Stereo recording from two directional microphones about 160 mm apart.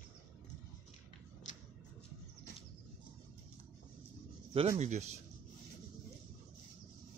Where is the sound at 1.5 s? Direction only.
50° left (ahead or behind).